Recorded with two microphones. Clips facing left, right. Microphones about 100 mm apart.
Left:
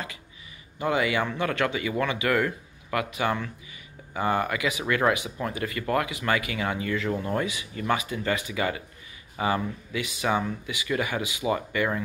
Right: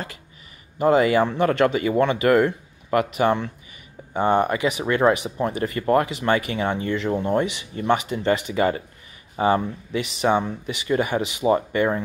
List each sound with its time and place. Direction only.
0.8 s speech: 35° right (ahead or behind)